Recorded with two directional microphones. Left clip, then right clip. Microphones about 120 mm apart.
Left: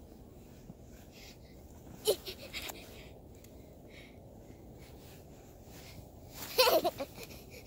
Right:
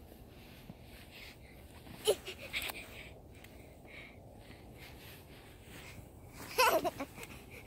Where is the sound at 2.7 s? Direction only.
5° right (ahead or behind).